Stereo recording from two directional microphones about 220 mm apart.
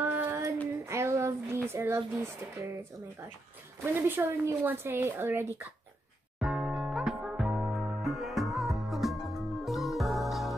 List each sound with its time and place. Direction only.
0.0 s child singing: 10° right (ahead or behind)
0.8 s a sound: 10° right (ahead or behind)
3.8 s a woman's voice: 10° right (ahead or behind)
6.4 s music: centre (ahead or behind)